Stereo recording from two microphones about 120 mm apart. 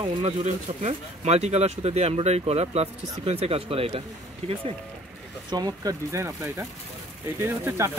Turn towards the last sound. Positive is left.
turn(degrees=-20)  # may be behind; listen again after turning